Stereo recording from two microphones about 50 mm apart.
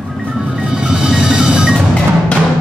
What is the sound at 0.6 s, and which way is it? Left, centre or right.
Music, centre.